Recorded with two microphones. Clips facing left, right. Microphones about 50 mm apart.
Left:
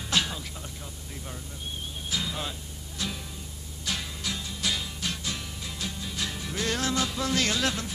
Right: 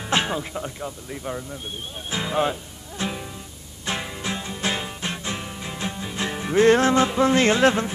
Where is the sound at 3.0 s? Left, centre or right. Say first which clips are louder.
Right 6 dB; right.